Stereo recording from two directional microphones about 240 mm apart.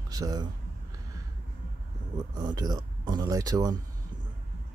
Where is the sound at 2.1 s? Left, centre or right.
Centre.